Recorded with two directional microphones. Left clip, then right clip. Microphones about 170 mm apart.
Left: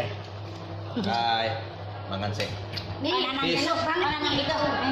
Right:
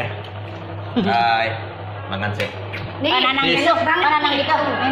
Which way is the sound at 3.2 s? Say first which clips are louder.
Right 11 dB; 50° right (ahead or behind).